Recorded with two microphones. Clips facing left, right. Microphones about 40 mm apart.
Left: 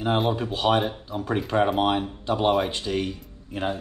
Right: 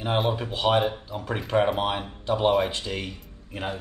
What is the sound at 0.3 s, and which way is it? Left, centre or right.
Speech, centre.